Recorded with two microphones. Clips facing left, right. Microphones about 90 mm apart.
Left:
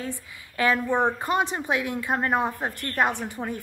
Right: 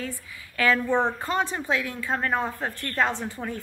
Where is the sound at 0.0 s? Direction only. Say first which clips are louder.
Left 1 dB; 20° left (ahead or behind).